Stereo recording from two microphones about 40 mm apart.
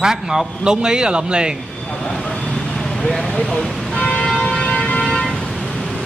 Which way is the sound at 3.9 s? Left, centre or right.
Left.